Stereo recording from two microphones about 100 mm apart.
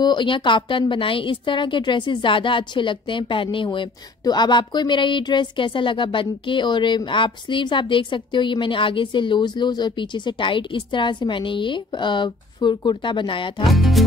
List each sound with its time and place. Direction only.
0.0 s a woman's voice: 50° left (ahead or behind)
4.2 s speech: 45° left (ahead or behind)
13.7 s speech: centre (ahead or behind)